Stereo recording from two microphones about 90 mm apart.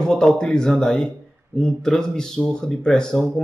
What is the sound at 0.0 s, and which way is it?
Speech, 5° left (ahead or behind).